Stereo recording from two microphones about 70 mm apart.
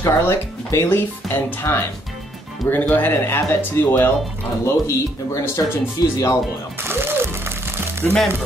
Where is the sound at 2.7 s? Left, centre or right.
Left.